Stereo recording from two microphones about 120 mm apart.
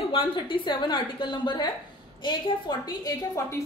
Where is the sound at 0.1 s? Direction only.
45° left (ahead or behind).